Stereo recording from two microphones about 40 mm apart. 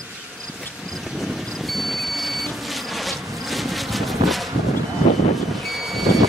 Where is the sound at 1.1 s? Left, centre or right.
Centre.